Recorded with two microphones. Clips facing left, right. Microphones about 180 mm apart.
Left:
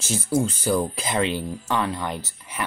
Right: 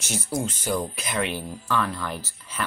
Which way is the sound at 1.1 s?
25° left (ahead or behind).